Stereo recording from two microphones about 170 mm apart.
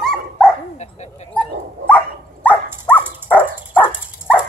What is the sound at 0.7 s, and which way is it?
Bow-wow, 40° left (ahead or behind).